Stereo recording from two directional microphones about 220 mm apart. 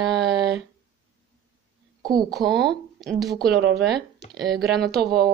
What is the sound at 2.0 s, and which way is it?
Speech, 20° right (ahead or behind).